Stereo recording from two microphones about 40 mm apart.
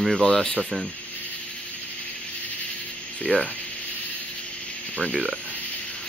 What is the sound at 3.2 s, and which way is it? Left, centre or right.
Speech, centre.